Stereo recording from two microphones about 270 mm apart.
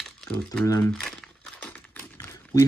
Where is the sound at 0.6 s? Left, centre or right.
Centre.